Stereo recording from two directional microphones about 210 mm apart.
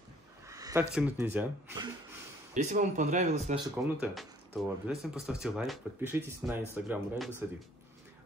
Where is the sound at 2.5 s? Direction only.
35° right (ahead or behind).